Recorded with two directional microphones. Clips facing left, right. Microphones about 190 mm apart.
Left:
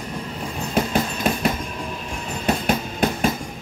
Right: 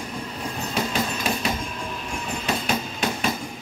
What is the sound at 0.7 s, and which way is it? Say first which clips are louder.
Hammer: left 5 dB; 55° left (ahead or behind).